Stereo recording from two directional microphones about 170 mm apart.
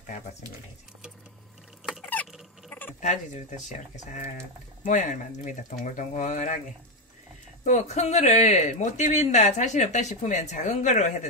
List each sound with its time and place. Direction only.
3.0 s speech: 45° left (ahead or behind)
7.6 s speech: 45° left (ahead or behind)